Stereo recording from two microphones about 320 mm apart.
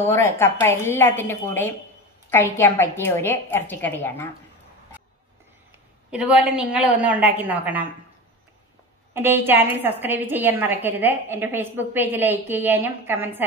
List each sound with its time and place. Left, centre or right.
0.1 s a woman's voice: centre
6.0 s a woman's voice: centre
9.1 s a woman's voice: centre